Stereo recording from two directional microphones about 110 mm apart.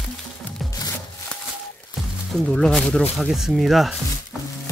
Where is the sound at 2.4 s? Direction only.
5° left (ahead or behind).